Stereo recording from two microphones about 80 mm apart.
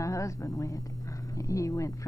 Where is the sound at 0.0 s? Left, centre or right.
Left.